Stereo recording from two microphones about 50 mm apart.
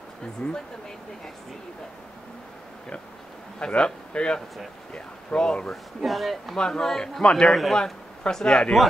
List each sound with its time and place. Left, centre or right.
0.4 s a man's voice: left
3.5 s a man's voice: centre
5.9 s speech: centre
6.5 s speech: centre